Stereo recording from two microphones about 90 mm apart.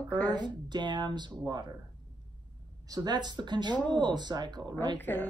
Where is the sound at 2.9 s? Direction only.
50° right (ahead or behind).